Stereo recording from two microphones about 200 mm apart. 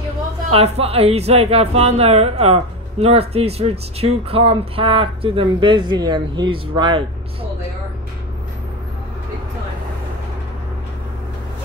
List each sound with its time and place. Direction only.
0.5 s a woman's voice: 30° right (ahead or behind)